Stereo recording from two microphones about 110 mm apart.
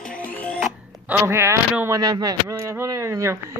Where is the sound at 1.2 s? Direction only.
25° right (ahead or behind).